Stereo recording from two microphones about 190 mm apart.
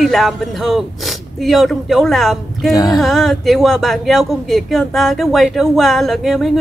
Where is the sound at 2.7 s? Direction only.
20° left (ahead or behind).